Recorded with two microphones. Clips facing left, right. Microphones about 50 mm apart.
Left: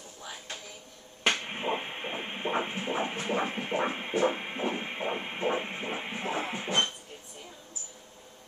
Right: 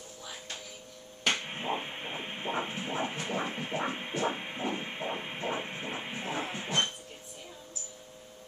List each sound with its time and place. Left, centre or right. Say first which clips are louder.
1.5 s heart murmur: left 2 dB; centre